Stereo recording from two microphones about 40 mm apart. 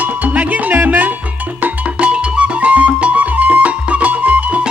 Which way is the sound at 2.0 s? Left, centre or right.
Right.